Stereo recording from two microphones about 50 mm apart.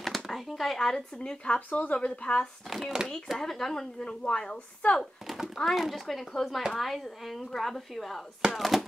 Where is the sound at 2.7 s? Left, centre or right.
Centre.